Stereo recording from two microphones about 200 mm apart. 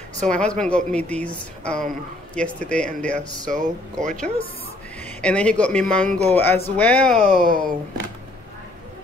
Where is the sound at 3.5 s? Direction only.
40° right (ahead or behind).